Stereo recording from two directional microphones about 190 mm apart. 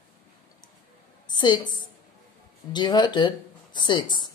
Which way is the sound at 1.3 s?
25° left (ahead or behind).